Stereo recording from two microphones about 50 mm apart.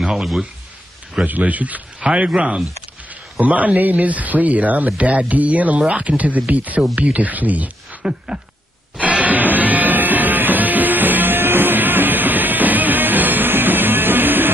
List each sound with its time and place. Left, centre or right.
0.0 s speech: centre
1.2 s speech: right
2.0 s speech: right
8.0 s a sound: centre
8.9 s music: right